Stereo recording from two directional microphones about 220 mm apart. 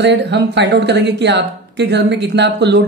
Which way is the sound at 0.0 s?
50° right (ahead or behind).